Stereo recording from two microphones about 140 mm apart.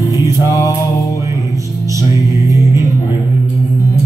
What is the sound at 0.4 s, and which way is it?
Music, 25° left (ahead or behind).